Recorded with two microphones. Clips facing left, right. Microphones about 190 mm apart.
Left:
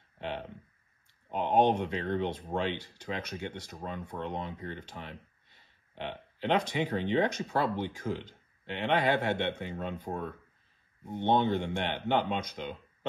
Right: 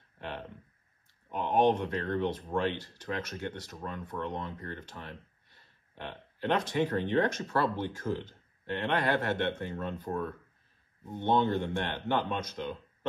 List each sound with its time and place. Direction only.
1.3 s speech: 20° left (ahead or behind)